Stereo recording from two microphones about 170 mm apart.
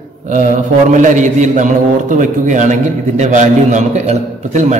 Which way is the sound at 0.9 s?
45° right (ahead or behind).